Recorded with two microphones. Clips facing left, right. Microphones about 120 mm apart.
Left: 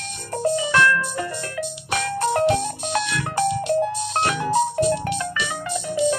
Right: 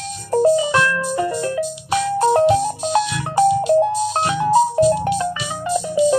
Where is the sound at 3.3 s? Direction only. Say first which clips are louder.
Right 7 dB; 25° right (ahead or behind).